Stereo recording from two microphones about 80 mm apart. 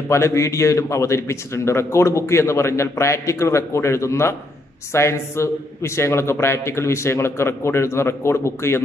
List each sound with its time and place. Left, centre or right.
0.1 s a man's voice: left